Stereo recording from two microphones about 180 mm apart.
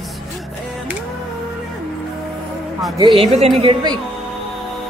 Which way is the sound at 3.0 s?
30° right (ahead or behind).